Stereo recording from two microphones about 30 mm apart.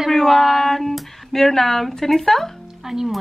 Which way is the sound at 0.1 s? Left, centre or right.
Centre.